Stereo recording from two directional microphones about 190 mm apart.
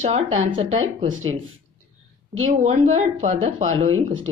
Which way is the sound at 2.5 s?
40° right (ahead or behind).